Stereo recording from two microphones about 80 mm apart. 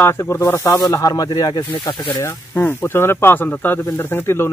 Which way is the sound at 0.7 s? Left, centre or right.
Left.